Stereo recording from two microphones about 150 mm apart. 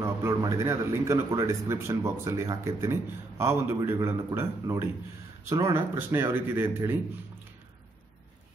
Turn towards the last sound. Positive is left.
turn(degrees=-15)  # may be behind; listen again after turning